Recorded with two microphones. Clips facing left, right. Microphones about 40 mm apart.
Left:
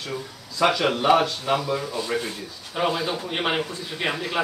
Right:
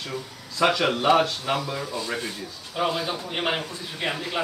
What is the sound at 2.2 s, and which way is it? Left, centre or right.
A man's voice, centre.